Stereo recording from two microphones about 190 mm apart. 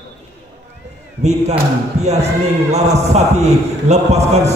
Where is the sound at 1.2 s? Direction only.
35° right (ahead or behind).